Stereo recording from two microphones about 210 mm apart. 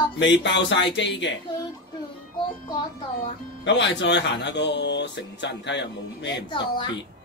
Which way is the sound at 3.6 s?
60° left (ahead or behind).